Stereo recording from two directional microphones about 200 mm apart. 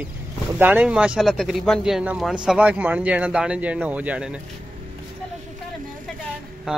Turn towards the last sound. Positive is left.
turn(degrees=-5)  # may be behind; listen again after turning